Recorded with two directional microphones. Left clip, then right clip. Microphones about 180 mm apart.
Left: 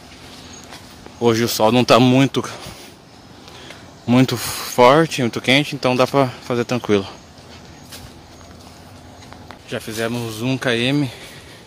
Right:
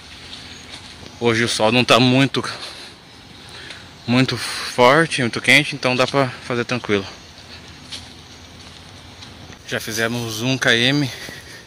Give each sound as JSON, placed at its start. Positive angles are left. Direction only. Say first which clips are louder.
{"t": 1.2, "sound": "speech", "louder": "left 1 dB", "side_deg": 20}
{"t": 4.1, "sound": "speech", "louder": "left 2 dB", "side_deg": 25}
{"t": 9.7, "sound": "speech", "louder": "right 2 dB", "side_deg": 5}